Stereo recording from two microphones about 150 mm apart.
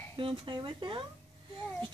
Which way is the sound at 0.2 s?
35° right (ahead or behind).